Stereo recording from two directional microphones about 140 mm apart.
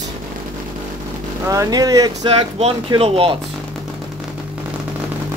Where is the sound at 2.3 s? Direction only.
45° right (ahead or behind).